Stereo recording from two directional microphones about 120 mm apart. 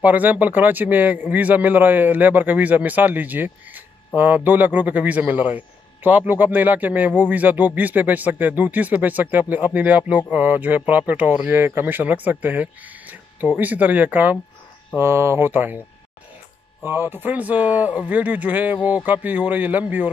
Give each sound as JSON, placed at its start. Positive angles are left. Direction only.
{"t": 0.0, "sound": "speech", "side_deg": -15}
{"t": 16.8, "sound": "speech", "side_deg": -20}